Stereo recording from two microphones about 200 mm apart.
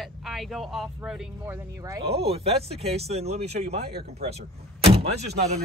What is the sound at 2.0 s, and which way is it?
Speech, 30° right (ahead or behind).